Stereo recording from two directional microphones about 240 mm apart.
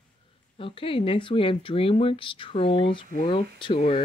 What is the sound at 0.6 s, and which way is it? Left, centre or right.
Speech, left.